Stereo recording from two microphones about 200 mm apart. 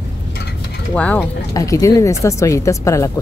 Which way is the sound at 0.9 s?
5° left (ahead or behind).